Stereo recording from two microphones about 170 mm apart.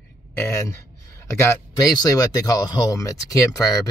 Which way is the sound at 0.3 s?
15° left (ahead or behind).